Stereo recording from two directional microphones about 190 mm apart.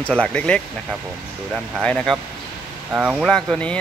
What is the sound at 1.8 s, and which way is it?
Speech, 5° left (ahead or behind).